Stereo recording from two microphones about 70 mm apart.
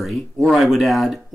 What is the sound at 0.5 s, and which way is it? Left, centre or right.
Speech, centre.